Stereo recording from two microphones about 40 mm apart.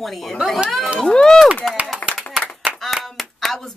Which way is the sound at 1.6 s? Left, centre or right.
Centre.